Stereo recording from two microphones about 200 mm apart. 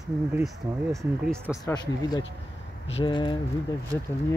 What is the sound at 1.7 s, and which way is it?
Speech, 20° left (ahead or behind).